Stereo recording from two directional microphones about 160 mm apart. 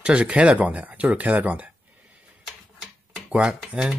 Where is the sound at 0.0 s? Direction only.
10° right (ahead or behind).